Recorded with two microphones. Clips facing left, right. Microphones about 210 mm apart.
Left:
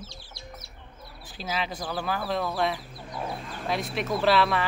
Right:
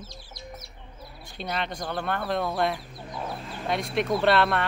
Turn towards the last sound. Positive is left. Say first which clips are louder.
# right 1 dB
turn(degrees=0)  # may be behind; listen again after turning